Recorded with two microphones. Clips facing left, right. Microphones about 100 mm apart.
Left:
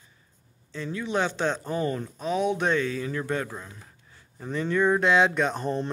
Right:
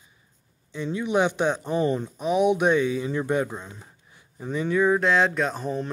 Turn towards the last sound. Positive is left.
turn(degrees=0)  # may be behind; listen again after turning